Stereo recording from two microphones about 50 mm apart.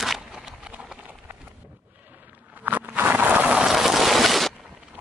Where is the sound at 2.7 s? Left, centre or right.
Right.